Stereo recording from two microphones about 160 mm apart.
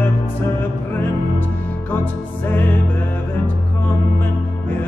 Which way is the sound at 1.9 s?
10° left (ahead or behind).